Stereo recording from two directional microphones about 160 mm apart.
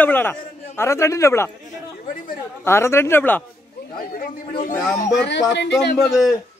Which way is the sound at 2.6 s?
15° left (ahead or behind).